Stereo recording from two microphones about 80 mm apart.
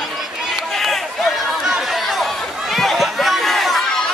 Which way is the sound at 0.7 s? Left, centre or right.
Centre.